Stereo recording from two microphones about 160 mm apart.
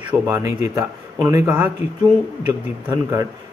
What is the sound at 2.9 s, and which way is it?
Speech, 25° right (ahead or behind).